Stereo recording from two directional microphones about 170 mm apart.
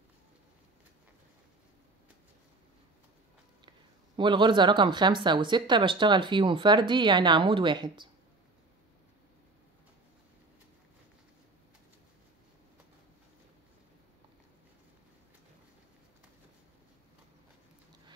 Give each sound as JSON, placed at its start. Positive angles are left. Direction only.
{"t": 4.2, "sound": "speech", "side_deg": -25}